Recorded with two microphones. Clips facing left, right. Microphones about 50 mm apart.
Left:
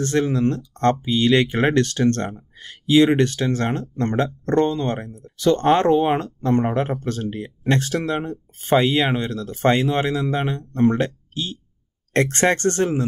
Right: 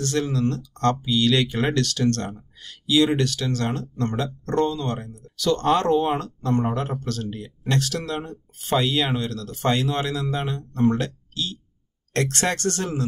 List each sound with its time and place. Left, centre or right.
0.0 s speech: left